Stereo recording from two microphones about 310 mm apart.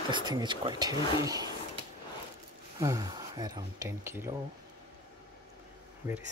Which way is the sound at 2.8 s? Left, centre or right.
Centre.